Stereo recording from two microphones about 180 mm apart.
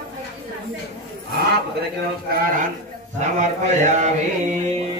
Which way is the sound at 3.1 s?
40° right (ahead or behind).